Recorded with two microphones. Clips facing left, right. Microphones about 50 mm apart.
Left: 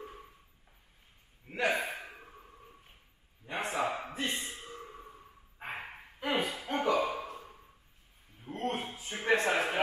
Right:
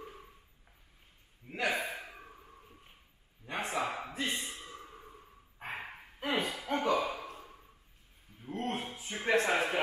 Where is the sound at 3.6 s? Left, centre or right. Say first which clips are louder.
Left 2 dB; left.